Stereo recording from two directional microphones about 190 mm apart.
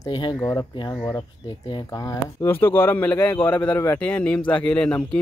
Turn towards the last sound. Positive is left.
turn(degrees=5)  # may be behind; listen again after turning